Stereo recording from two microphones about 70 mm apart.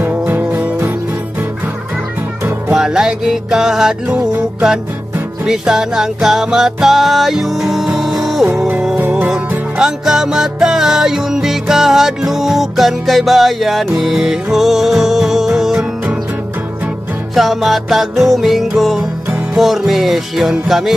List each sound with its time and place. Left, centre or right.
0.0 s music: right
2.7 s music: centre
4.1 s music: centre
17.4 s music: centre